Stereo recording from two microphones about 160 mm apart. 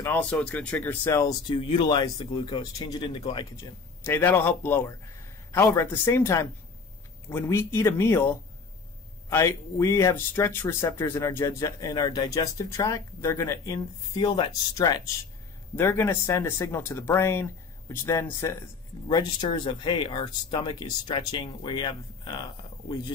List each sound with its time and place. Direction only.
0.0 s speech: 10° left (ahead or behind)
1.5 s speech: 30° left (ahead or behind)
4.0 s speech: 10° left (ahead or behind)
15.7 s speech: 15° left (ahead or behind)
19.0 s speech: 25° left (ahead or behind)